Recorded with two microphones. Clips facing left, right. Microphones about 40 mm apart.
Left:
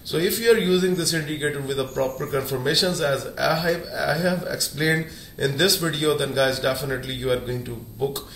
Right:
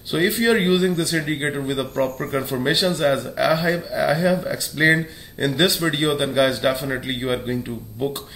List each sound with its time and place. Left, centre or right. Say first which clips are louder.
0.1 s speech: right 1 dB; right